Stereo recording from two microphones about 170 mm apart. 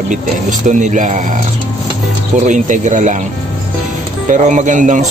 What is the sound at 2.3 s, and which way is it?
Speech, 45° right (ahead or behind).